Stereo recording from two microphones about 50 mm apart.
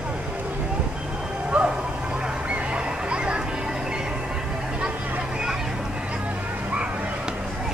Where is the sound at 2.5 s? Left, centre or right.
Right.